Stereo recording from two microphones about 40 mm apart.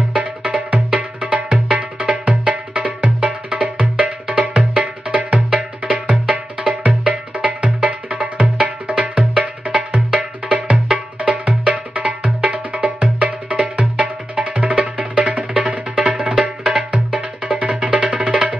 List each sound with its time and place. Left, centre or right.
0.1 s music: right
16.9 s music: right